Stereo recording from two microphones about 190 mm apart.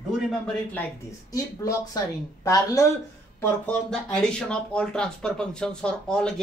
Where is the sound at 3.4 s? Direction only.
5° left (ahead or behind).